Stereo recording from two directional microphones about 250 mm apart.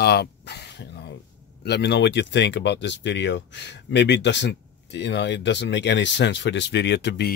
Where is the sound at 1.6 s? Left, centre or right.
Left.